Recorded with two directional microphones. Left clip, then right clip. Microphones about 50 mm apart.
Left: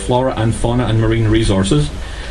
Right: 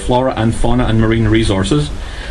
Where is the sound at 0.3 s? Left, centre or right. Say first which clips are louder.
Right 2 dB; right.